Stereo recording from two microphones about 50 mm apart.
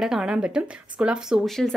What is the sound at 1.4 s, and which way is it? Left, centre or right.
Speech, centre.